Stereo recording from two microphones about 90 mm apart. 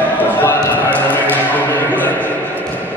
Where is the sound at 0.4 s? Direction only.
20° left (ahead or behind).